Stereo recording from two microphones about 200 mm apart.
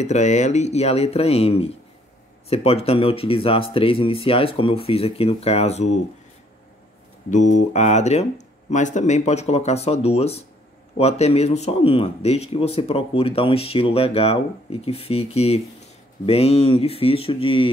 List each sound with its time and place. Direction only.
0.0 s a man's voice: 35° left (ahead or behind)
7.2 s a man's voice: 40° left (ahead or behind)